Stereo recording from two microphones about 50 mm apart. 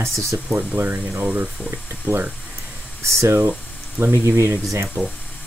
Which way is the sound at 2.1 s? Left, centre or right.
Right.